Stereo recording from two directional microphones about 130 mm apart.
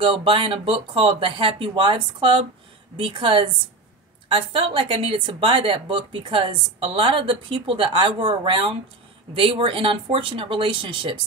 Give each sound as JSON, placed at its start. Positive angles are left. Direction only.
{"t": 0.0, "sound": "speech", "side_deg": -40}